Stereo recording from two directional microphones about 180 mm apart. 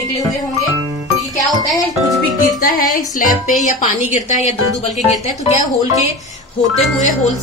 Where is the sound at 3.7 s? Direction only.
40° left (ahead or behind).